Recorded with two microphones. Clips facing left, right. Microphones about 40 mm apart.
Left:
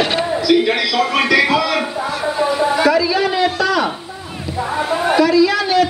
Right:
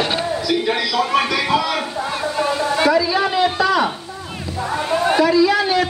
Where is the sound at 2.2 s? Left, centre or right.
Centre.